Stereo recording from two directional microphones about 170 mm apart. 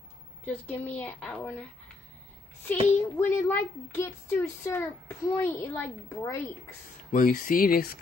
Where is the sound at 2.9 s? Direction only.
10° left (ahead or behind).